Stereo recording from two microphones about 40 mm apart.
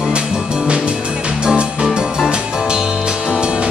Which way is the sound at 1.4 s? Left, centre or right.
Right.